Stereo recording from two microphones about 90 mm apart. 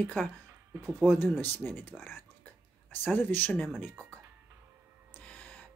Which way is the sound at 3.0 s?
20° left (ahead or behind).